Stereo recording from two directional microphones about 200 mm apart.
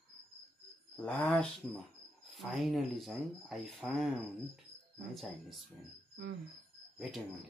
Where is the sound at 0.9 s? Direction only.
5° left (ahead or behind).